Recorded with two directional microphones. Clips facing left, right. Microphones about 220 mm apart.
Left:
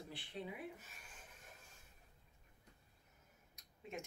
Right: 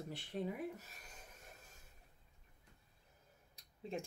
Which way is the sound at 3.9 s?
35° right (ahead or behind).